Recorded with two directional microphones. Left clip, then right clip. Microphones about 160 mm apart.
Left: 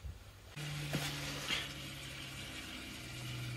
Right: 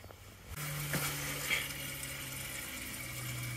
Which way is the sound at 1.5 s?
Centre (ahead or behind).